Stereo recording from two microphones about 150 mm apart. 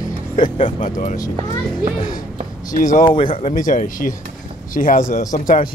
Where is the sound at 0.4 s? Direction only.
55° left (ahead or behind).